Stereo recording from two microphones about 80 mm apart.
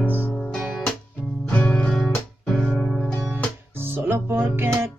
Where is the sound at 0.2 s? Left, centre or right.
Centre.